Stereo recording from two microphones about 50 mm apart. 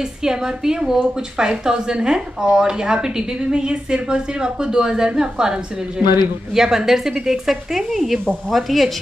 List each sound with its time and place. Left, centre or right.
0.2 s a woman's voice: centre